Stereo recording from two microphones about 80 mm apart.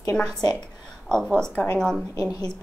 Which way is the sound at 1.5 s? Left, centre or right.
Left.